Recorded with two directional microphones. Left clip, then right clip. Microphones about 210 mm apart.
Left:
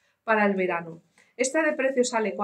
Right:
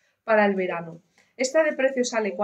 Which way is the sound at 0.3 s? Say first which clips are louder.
Right 2 dB; 15° left (ahead or behind).